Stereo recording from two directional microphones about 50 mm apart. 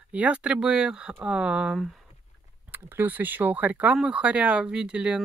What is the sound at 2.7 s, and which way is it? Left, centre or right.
Speech, right.